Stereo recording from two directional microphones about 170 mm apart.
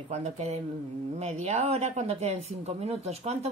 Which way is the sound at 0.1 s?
40° right (ahead or behind).